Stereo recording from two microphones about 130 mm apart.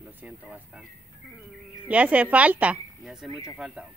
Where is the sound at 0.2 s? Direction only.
10° right (ahead or behind).